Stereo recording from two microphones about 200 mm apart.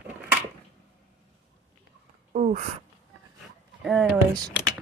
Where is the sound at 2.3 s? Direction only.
40° right (ahead or behind).